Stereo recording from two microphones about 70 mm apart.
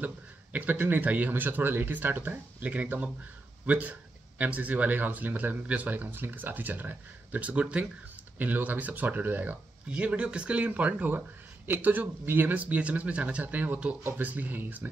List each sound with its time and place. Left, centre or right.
0.0 s speech: right